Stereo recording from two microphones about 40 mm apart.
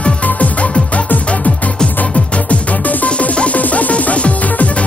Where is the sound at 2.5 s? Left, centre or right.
Left.